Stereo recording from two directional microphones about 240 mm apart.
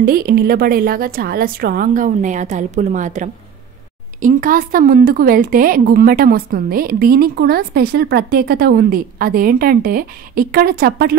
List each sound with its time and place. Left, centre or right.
0.0 s speech: right